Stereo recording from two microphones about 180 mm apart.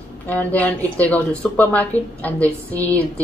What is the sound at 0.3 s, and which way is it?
A woman's voice, 10° left (ahead or behind).